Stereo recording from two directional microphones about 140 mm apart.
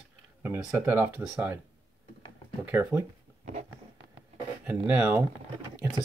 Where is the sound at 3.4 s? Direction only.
55° right (ahead or behind).